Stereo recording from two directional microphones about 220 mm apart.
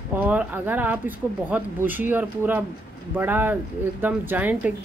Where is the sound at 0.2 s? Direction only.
10° right (ahead or behind).